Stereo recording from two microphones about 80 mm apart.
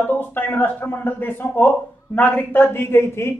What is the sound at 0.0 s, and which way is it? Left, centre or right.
A man's voice, left.